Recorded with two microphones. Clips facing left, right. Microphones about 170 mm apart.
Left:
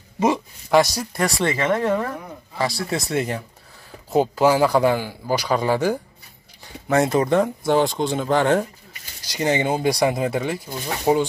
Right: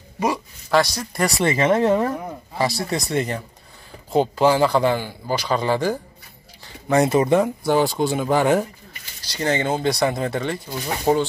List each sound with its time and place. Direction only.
0.2 s speech: 20° left (ahead or behind)
1.4 s speech: 15° right (ahead or behind)
2.6 s speech: centre (ahead or behind)
6.9 s speech: centre (ahead or behind)
9.2 s speech: 15° left (ahead or behind)